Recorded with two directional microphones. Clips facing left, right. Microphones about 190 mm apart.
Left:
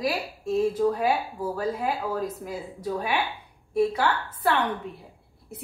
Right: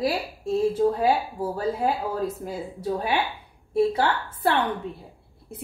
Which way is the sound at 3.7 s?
30° right (ahead or behind).